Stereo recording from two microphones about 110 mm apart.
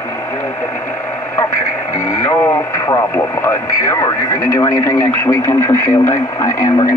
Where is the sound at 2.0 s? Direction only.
25° left (ahead or behind).